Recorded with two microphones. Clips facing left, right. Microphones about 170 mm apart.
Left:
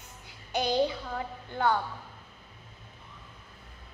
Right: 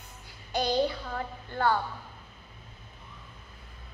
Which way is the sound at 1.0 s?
10° left (ahead or behind).